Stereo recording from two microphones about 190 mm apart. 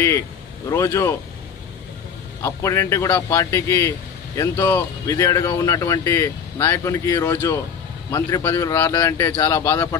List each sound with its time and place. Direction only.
0.7 s speech: 15° left (ahead or behind)
2.4 s speech: 15° left (ahead or behind)